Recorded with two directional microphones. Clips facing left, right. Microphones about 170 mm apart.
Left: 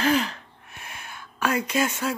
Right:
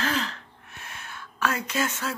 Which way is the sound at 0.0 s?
15° left (ahead or behind).